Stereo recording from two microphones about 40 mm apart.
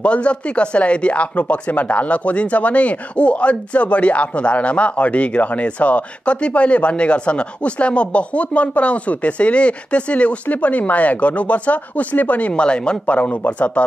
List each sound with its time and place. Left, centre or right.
0.0 s speech: left
12.5 s speech: left
13.0 s speech: left